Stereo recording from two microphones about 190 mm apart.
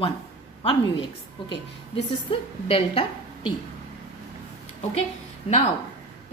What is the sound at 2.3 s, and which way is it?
A woman's voice, 30° left (ahead or behind).